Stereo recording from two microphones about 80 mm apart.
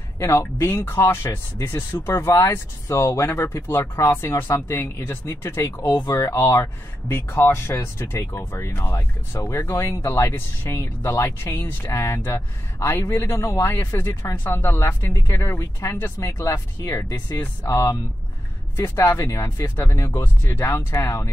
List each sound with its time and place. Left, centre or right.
0.2 s speech: left
20.4 s speech: left